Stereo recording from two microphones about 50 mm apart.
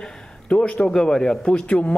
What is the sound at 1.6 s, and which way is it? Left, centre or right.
Speech, left.